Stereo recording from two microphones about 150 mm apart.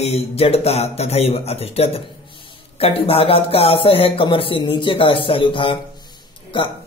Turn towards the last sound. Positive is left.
turn(degrees=35)  # may be behind; listen again after turning